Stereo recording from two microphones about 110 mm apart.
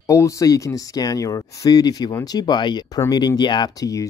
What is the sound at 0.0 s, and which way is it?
Speech, 30° left (ahead or behind).